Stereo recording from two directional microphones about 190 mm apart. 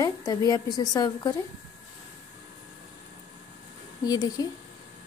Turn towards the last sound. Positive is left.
turn(degrees=20)  # may be behind; listen again after turning